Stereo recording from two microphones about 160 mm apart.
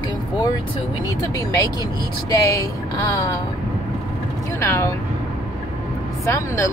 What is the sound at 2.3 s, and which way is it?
Speech, 20° left (ahead or behind).